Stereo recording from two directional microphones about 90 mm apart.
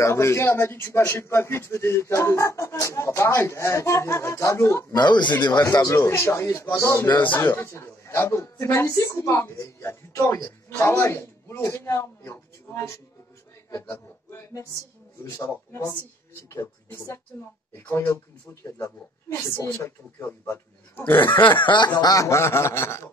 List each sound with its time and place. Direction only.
0.0 s speech: 30° left (ahead or behind)
4.9 s speech: 55° left (ahead or behind)
5.6 s speech: 40° left (ahead or behind); by 21.3 s 20° left (ahead or behind)
21.5 s speech: 60° left (ahead or behind); by 23.0 s 30° left (ahead or behind)